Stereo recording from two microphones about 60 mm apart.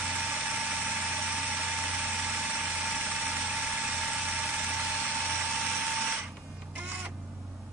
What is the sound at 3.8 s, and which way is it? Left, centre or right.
Ratchet, centre.